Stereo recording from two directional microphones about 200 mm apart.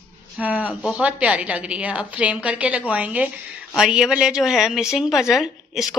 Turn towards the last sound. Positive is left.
turn(degrees=0)  # may be behind; listen again after turning